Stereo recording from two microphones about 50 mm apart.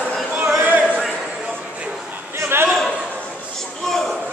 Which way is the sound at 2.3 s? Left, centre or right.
Right.